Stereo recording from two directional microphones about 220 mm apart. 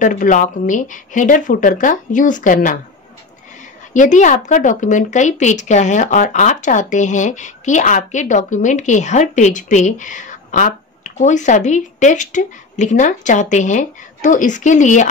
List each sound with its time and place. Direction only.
0.0 s a woman's voice: 35° left (ahead or behind)
3.9 s a woman's voice: 35° left (ahead or behind)